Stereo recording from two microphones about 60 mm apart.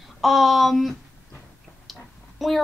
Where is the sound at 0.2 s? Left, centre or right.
Centre.